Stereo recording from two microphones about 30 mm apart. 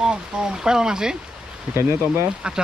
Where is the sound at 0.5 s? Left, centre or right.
Right.